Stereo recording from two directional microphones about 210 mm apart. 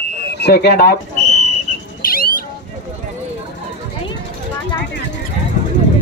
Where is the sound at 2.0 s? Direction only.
45° left (ahead or behind).